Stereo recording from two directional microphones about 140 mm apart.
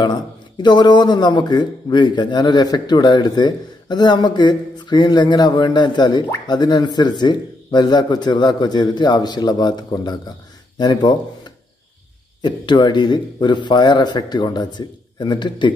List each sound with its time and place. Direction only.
0.0 s a man's voice: 30° left (ahead or behind)
12.4 s a man's voice: 30° left (ahead or behind)